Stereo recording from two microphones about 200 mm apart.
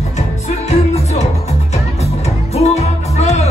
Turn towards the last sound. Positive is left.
turn(degrees=35)  # may be behind; listen again after turning